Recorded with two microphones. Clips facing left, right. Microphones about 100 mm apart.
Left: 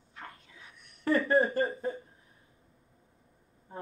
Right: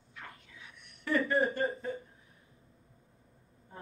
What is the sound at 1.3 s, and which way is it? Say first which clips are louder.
Speech: left 5 dB; 35° left (ahead or behind).